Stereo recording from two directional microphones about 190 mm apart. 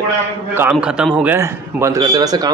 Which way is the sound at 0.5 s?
5° right (ahead or behind).